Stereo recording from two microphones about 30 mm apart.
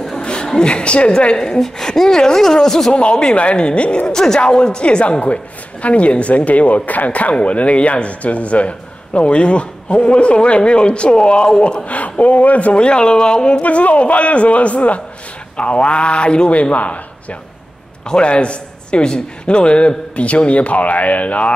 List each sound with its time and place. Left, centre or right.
0.2 s a sound: left
0.7 s a man's voice: left
1.4 s speech: centre
2.9 s a man's voice: left
4.1 s a man's voice: centre
4.4 s a man's voice: left
5.2 s a man's voice: left
11.8 s speech: left
12.7 s a man's voice: left
13.6 s speech: left
15.5 s a man's voice: left
16.7 s speech: left
18.0 s a man's voice: left